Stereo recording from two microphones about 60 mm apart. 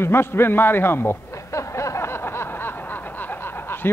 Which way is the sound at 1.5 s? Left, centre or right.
Left.